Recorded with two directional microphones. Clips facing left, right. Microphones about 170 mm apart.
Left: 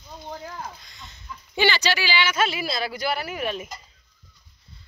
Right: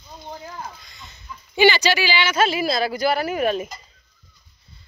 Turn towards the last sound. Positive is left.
turn(degrees=-45)  # may be behind; listen again after turning